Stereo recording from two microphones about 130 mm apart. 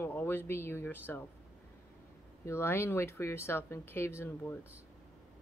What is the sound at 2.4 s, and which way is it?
Speech, 20° left (ahead or behind).